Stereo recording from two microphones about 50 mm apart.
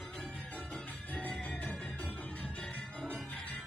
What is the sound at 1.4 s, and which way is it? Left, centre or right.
Music, left.